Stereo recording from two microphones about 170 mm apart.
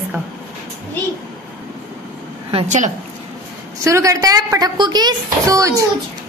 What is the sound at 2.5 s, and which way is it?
Speech, 35° right (ahead or behind).